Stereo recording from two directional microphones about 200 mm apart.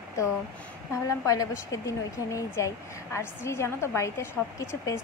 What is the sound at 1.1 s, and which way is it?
Speech, 15° left (ahead or behind).